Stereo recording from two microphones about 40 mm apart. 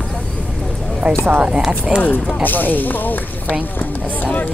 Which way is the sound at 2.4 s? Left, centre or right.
Left.